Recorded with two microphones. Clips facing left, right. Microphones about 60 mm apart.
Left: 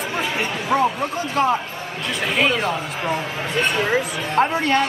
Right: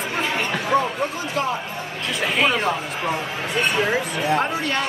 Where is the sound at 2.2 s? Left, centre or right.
Centre.